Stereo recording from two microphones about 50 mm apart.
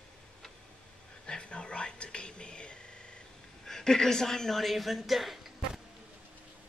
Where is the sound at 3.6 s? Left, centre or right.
Centre.